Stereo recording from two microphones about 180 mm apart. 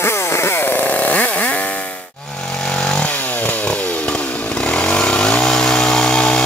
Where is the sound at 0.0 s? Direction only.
15° left (ahead or behind).